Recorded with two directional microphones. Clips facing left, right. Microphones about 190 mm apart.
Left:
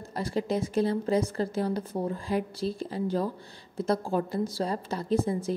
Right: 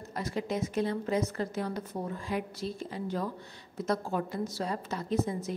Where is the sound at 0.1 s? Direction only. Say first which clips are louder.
Left 4 dB; 30° left (ahead or behind).